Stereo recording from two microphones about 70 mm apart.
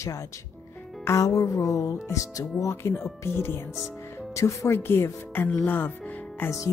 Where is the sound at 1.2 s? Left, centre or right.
Left.